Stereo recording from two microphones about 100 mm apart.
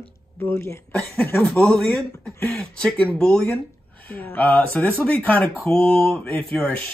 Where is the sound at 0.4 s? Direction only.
25° left (ahead or behind).